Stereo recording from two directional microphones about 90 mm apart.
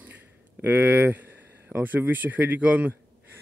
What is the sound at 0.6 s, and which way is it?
Speech, 20° right (ahead or behind).